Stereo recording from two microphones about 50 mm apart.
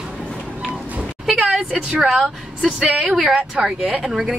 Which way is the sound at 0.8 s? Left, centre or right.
Right.